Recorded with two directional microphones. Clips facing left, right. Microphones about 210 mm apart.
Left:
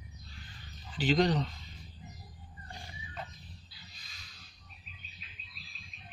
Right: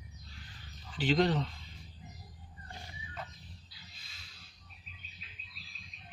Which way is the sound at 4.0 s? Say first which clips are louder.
Left 1 dB; 30° right (ahead or behind).